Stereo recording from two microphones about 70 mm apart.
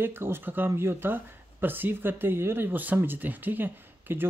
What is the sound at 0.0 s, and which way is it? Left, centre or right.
Speech, right.